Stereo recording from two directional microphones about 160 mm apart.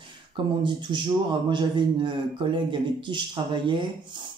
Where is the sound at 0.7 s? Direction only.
30° right (ahead or behind).